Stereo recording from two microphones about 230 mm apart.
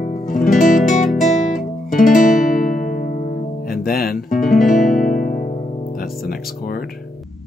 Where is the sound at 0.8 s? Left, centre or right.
Left.